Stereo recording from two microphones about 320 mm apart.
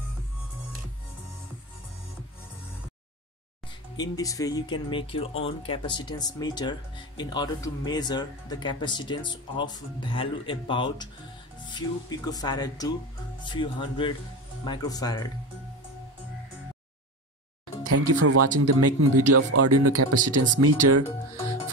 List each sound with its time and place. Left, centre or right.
3.9 s speech: centre
12.3 s speech: centre
17.8 s speech: right